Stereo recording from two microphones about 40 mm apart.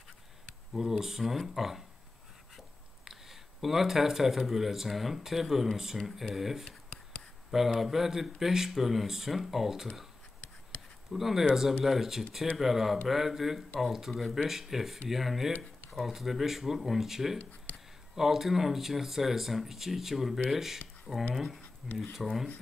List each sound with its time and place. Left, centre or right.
0.7 s speech: centre
3.1 s speech: centre
6.6 s a sound: left
7.5 s speech: centre
11.1 s speech: centre
17.4 s speech: left
18.1 s speech: centre
21.1 s speech: centre
22.1 s speech: centre